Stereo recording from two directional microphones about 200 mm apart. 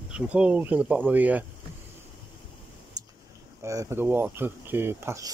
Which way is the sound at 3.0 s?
20° right (ahead or behind).